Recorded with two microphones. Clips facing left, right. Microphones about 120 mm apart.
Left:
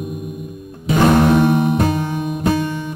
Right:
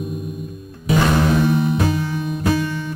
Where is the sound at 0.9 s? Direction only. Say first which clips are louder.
Left 5 dB; 55° left (ahead or behind).